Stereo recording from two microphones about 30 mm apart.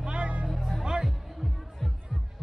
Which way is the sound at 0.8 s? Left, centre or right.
Right.